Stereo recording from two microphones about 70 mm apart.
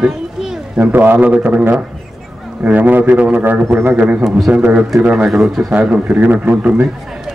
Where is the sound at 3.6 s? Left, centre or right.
Right.